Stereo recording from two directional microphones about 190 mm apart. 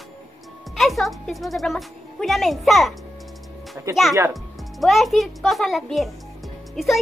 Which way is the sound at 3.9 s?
20° right (ahead or behind).